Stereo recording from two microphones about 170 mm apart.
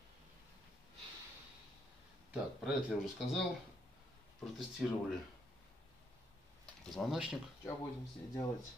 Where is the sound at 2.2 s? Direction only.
Centre (ahead or behind).